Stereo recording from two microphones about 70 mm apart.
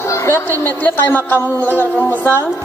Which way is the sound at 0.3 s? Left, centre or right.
Left.